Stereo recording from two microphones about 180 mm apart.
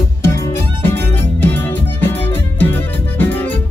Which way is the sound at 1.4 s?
10° left (ahead or behind).